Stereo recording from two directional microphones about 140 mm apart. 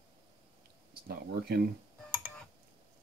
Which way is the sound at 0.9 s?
90° right.